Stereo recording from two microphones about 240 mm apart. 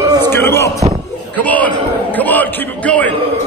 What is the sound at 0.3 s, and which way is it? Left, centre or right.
Music, centre.